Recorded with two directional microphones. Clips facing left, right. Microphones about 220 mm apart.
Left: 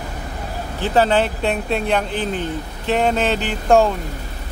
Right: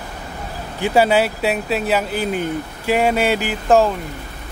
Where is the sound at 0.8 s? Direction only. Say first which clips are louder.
Right 1 dB; 10° right (ahead or behind).